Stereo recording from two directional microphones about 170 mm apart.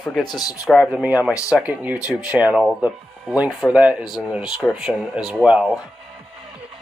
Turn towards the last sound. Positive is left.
turn(degrees=-5)  # may be behind; listen again after turning